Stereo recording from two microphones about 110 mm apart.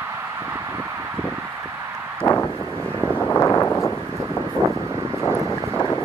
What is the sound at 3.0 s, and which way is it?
Wind noise, 15° left (ahead or behind).